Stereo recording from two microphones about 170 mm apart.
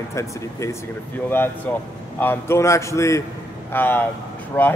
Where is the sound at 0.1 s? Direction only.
15° left (ahead or behind).